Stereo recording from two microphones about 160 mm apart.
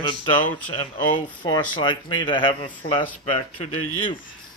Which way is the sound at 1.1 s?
30° left (ahead or behind).